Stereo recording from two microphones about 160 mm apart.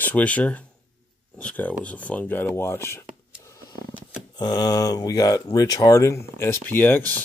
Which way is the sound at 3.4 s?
20° left (ahead or behind).